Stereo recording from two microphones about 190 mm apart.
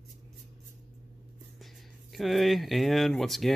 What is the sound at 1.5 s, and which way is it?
Speech, centre (ahead or behind).